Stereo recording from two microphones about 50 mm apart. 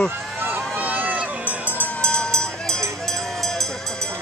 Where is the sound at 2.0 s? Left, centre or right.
Centre.